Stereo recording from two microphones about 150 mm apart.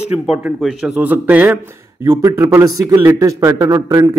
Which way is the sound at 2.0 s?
20° right (ahead or behind).